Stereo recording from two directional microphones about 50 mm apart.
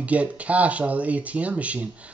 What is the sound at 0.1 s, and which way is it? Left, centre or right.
Speech, right.